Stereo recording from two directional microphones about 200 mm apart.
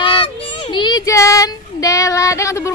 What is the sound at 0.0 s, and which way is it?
Child singing, 25° left (ahead or behind).